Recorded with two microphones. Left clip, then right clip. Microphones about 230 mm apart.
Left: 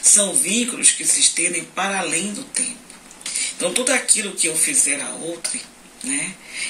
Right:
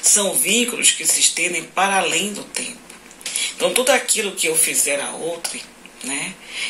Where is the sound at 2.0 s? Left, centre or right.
Right.